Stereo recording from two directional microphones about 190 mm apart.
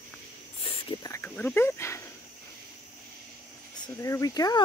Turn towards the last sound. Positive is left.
turn(degrees=20)  # may be behind; listen again after turning